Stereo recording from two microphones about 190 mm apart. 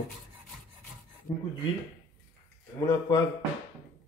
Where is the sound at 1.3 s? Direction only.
20° left (ahead or behind).